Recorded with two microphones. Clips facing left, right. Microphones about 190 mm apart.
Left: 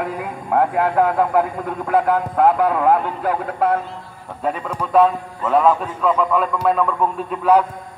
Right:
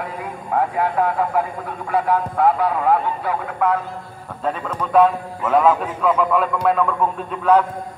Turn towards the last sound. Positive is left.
turn(degrees=5)  # may be behind; listen again after turning